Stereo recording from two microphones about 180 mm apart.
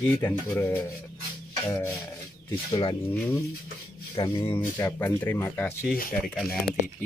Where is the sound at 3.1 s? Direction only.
10° left (ahead or behind).